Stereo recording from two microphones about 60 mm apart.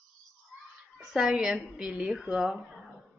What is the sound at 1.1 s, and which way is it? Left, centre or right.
Speech, centre.